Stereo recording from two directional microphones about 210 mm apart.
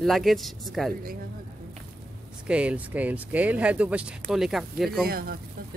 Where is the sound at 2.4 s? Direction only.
5° right (ahead or behind).